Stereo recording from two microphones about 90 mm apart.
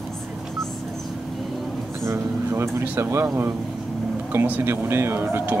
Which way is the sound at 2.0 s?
35° right (ahead or behind).